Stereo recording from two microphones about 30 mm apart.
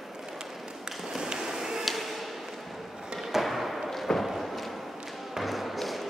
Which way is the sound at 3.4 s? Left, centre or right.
Centre.